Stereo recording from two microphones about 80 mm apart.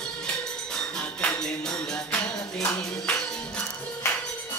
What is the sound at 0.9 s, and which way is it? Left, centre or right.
Music, centre.